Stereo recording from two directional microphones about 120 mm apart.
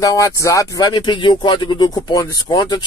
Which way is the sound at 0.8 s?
40° left (ahead or behind).